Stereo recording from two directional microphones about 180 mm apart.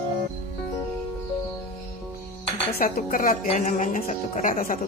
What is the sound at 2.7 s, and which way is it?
A woman's voice, 55° left (ahead or behind).